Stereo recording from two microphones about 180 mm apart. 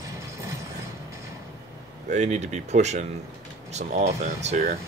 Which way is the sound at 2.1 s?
40° right (ahead or behind).